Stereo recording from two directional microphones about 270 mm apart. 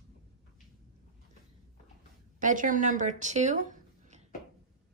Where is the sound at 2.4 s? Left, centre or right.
Right.